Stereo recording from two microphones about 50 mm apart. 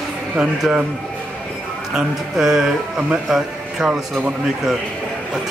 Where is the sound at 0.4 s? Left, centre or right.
Centre.